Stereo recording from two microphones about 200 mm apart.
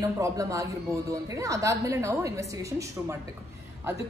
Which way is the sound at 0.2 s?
15° right (ahead or behind).